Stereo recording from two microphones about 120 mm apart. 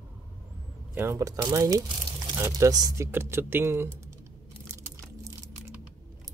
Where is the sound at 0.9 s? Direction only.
20° right (ahead or behind).